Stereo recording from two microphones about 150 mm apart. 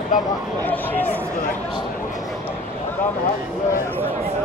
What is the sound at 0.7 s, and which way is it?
Speech, 10° left (ahead or behind).